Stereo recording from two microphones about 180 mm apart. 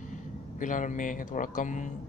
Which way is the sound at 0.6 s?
45° left (ahead or behind).